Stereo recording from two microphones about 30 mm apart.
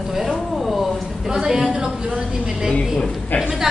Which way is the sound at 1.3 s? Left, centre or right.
Right.